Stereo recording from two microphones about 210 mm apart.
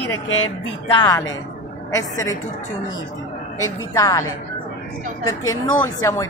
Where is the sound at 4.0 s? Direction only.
15° left (ahead or behind).